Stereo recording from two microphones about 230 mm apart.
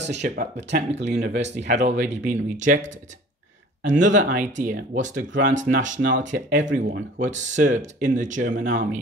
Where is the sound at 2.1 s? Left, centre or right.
Right.